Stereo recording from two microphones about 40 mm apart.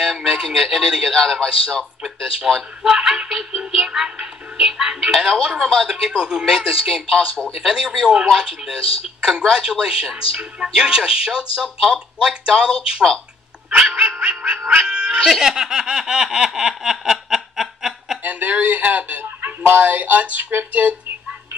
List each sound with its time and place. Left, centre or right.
0.3 s speech: centre
1.1 s a man's voice: centre
2.0 s a man's voice: centre
5.9 s speech: right
13.7 s dog: right
14.2 s speech: right
15.2 s speech: centre
15.5 s snicker: centre
18.2 s speech: right
19.8 s a sound: right
20.8 s speech: right